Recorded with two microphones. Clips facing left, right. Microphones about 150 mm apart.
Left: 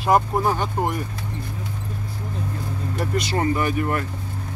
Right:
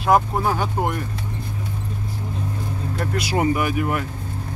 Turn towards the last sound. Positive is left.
turn(degrees=-10)  # may be behind; listen again after turning